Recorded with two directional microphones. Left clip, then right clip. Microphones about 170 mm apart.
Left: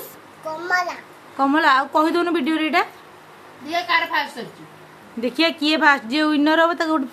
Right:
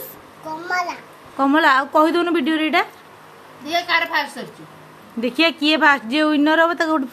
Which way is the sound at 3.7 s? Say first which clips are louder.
Right 1 dB; 50° right (ahead or behind).